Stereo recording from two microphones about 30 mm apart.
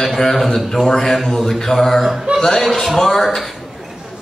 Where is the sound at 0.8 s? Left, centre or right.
Centre.